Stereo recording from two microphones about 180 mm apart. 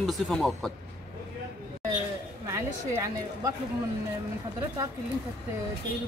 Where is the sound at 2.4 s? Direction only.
15° right (ahead or behind).